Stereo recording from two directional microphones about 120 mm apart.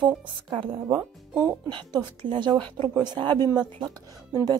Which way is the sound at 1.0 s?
25° right (ahead or behind).